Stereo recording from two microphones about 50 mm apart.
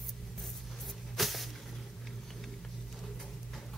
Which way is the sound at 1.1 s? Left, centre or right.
Centre.